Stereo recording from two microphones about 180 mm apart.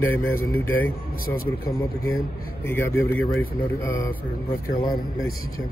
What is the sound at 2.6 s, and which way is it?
Speech, 10° left (ahead or behind).